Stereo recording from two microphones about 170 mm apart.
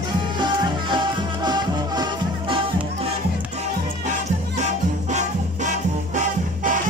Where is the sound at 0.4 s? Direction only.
25° right (ahead or behind).